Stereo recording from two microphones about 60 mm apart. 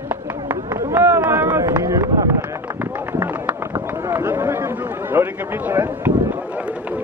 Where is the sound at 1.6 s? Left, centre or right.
Right.